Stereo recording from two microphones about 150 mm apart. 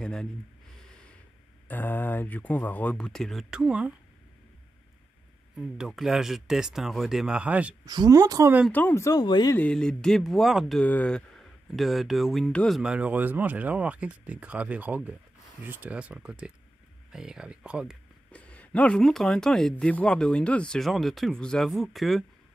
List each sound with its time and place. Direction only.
0.0 s a sound: 5° left (ahead or behind)
1.7 s speech: 10° left (ahead or behind); by 3.9 s 5° right (ahead or behind)
5.6 s speech: centre (ahead or behind)
7.8 s a woman's voice: 25° right (ahead or behind)
8.7 s speech: 15° left (ahead or behind)
9.6 s speech: 5° left (ahead or behind)
18.3 s speech: 10° left (ahead or behind)